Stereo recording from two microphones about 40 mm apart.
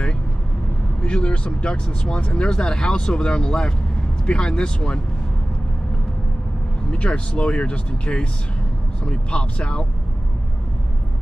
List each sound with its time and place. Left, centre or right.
1.0 s speech: left
6.9 s speech: left